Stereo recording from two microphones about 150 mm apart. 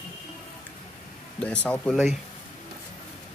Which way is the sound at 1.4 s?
10° left (ahead or behind).